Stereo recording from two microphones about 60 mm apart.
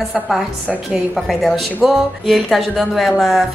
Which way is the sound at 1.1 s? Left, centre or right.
Centre.